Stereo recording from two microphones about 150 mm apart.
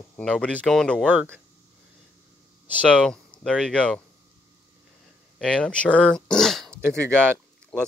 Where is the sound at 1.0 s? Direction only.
10° right (ahead or behind).